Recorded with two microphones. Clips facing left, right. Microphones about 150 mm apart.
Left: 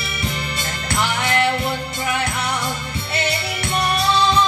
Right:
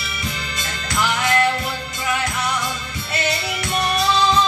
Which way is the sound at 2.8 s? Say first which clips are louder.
Left 1 dB; 60° left (ahead or behind).